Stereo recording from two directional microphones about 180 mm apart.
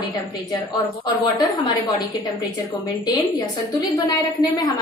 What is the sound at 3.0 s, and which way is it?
Speech, 25° left (ahead or behind).